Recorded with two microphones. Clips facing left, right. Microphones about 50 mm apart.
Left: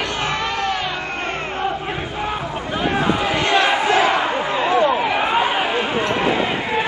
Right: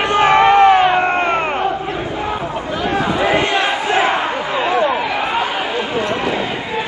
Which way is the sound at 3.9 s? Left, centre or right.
Right.